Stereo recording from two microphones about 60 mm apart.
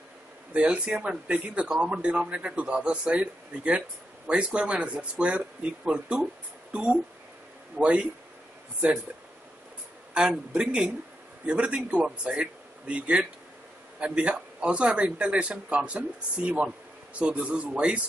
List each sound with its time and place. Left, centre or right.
0.5 s speech: right
10.1 s speech: centre